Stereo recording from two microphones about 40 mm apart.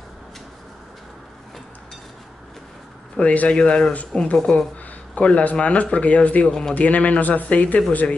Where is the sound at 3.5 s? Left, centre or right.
Left.